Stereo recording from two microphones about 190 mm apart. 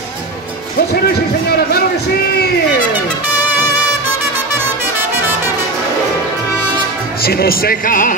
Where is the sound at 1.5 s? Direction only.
55° left (ahead or behind).